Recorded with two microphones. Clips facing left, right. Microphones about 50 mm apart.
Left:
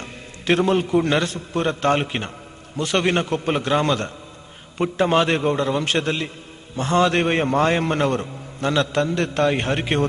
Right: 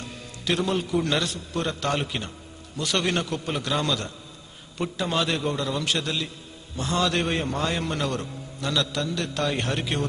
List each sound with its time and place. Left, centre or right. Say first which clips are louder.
0.0 s a man's voice: left 4 dB; left